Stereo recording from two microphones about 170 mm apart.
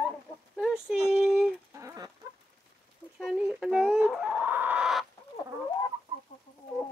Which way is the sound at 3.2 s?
Centre (ahead or behind).